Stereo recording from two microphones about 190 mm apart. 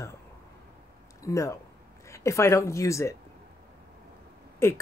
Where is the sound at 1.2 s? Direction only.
15° left (ahead or behind).